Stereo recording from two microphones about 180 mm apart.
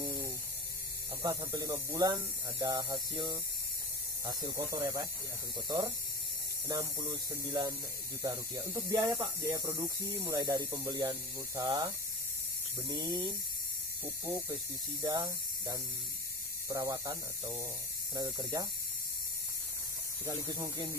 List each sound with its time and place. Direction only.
0.0 s mains hum: 20° right (ahead or behind)
1.2 s speech: 15° right (ahead or behind)
20.2 s speech: 20° right (ahead or behind)